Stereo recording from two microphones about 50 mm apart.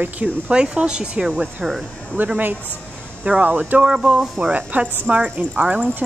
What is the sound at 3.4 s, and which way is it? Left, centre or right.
Speech, right.